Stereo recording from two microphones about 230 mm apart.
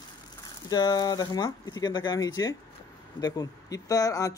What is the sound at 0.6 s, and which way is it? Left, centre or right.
Speech, centre.